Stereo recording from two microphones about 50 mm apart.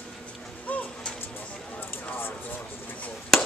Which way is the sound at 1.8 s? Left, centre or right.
Left.